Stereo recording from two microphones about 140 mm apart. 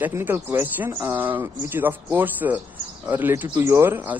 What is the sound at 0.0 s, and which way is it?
Speech, 15° right (ahead or behind).